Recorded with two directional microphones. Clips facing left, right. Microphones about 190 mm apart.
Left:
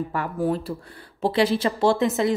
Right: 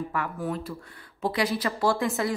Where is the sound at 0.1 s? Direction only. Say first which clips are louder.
Left 6 dB; 30° left (ahead or behind).